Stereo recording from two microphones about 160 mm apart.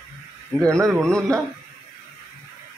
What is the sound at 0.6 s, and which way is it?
Speech, 20° right (ahead or behind).